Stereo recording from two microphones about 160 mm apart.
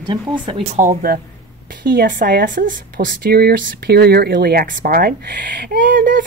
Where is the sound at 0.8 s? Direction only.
60° right (ahead or behind).